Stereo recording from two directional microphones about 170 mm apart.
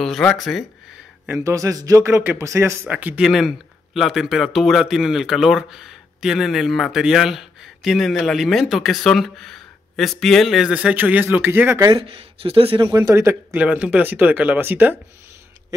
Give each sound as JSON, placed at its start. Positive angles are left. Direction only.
{"t": 0.0, "sound": "speech", "side_deg": 5}
{"t": 1.2, "sound": "speech", "side_deg": -15}
{"t": 11.9, "sound": "speech", "side_deg": -35}
{"t": 12.9, "sound": "speech", "side_deg": -20}